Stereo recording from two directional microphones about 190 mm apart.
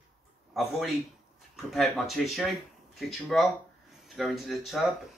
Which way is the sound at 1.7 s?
Centre (ahead or behind).